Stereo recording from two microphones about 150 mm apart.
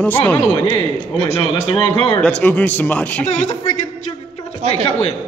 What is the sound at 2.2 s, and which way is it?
Speech, 5° left (ahead or behind).